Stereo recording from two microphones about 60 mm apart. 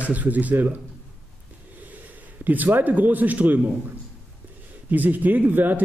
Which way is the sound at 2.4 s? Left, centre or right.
Right.